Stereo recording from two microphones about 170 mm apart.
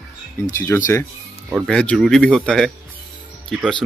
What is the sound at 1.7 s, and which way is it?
Speech, 5° left (ahead or behind).